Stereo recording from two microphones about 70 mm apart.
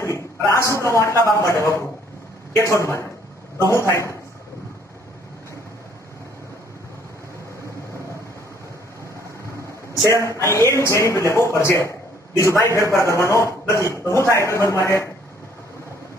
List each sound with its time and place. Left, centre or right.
0.0 s a sound: left
0.7 s speech: left
10.0 s speech: left